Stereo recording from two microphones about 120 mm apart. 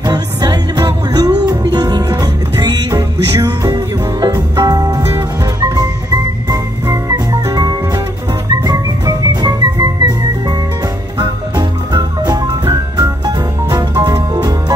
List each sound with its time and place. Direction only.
0.0 s music: 35° right (ahead or behind)
11.1 s music: 35° right (ahead or behind)